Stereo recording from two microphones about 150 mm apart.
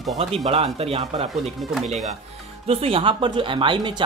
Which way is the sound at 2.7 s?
40° right (ahead or behind).